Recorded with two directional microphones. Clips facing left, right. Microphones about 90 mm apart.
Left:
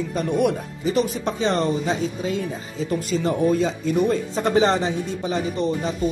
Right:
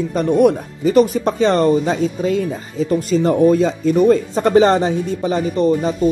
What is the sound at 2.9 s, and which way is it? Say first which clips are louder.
Speech: right 7 dB; 40° right (ahead or behind).